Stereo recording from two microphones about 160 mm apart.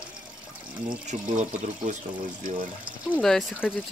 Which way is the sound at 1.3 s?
50° right (ahead or behind).